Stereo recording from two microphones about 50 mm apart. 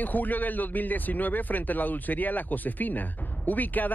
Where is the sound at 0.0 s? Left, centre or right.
Left.